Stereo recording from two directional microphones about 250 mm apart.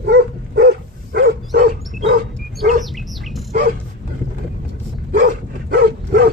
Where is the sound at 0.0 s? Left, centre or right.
Right.